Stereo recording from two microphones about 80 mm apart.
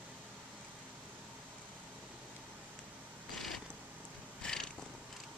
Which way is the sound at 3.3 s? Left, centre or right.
Centre.